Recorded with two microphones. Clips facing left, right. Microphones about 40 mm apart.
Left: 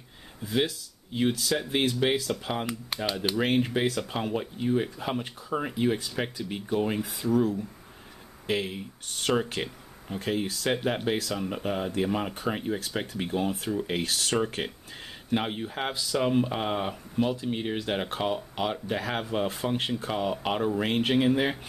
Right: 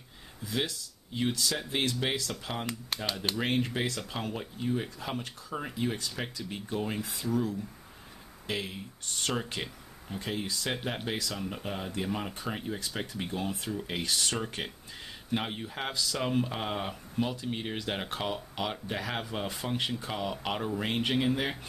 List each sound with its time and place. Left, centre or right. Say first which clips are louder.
0.5 s speech: left 5 dB; centre
8.5 s speech: left 6 dB; centre
10.6 s speech: left 7 dB; centre